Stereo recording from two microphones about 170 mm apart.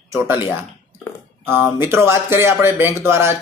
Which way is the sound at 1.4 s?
10° right (ahead or behind).